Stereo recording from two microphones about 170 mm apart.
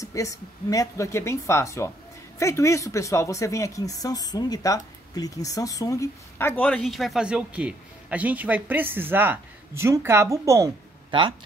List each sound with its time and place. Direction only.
0.0 s speech: 20° left (ahead or behind); by 10.7 s 20° right (ahead or behind)
11.1 s speech: 30° right (ahead or behind)